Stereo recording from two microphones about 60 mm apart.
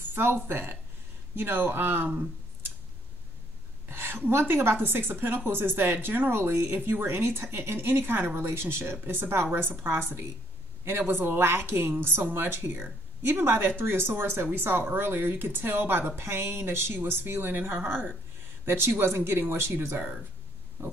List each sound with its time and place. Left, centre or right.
0.1 s speech: right
3.9 s a woman's voice: right